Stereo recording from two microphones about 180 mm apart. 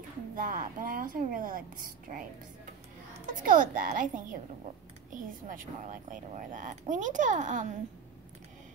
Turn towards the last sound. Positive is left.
turn(degrees=-45)  # may be behind; listen again after turning